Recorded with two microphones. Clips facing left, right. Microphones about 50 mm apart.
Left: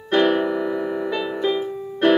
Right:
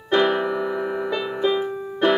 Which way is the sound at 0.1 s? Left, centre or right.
Centre.